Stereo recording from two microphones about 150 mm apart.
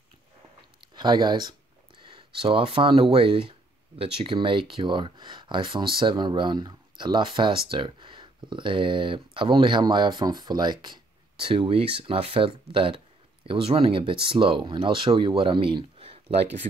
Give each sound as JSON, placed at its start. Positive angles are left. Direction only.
{"t": 0.7, "sound": "speech", "side_deg": -30}